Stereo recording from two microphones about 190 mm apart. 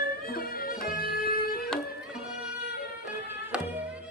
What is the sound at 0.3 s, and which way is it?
Music, 50° left (ahead or behind).